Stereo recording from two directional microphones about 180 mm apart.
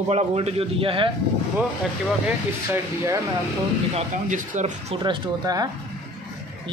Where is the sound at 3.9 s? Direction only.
40° right (ahead or behind).